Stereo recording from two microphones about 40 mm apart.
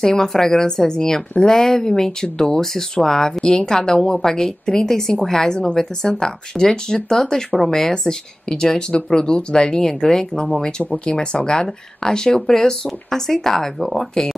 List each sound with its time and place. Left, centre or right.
0.0 s speech: centre